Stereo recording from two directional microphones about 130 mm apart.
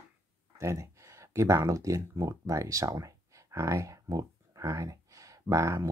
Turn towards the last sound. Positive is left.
turn(degrees=-25)  # may be behind; listen again after turning